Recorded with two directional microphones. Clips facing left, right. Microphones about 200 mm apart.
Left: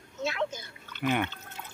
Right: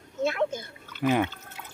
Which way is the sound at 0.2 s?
55° right (ahead or behind).